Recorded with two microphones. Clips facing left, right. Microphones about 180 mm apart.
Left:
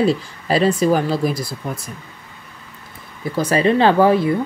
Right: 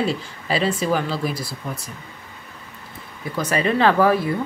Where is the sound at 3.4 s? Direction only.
30° left (ahead or behind).